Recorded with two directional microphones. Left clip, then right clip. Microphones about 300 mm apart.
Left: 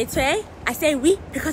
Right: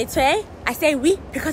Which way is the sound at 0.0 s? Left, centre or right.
Centre.